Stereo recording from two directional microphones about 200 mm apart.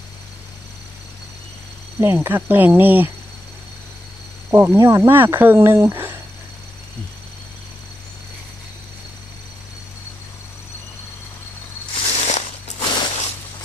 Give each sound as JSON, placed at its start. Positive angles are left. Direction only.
{"t": 2.0, "sound": "speech", "side_deg": -10}
{"t": 4.5, "sound": "speech", "side_deg": -10}
{"t": 12.1, "sound": "a sound", "side_deg": 30}